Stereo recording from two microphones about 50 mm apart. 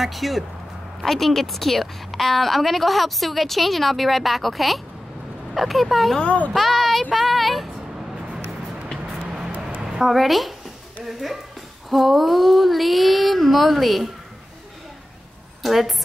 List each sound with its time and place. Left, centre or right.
0.0 s a woman's voice: centre
9.1 s vehicle: centre
9.8 s a woman's voice: centre
11.1 s a sound: centre
11.9 s a woman's voice: centre
15.6 s a woman's voice: centre